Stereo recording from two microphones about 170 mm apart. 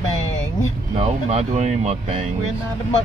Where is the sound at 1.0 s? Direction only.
40° right (ahead or behind).